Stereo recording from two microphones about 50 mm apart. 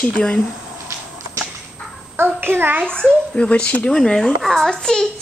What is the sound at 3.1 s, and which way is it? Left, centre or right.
Speech, left.